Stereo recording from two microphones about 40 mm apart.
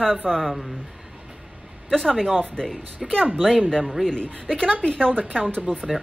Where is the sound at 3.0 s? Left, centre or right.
Centre.